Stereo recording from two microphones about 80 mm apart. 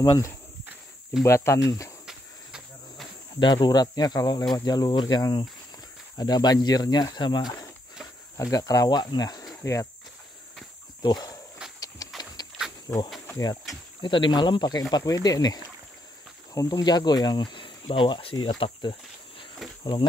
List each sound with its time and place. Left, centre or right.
1.2 s speech: left
2.0 s cricket: centre
3.3 s speech: left
8.4 s speech: left
9.6 s speech: left
11.0 s a sound: left
14.0 s speech: left
19.8 s speech: left